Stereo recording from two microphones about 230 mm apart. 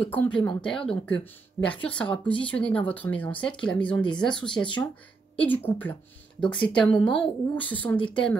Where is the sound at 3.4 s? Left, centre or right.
Left.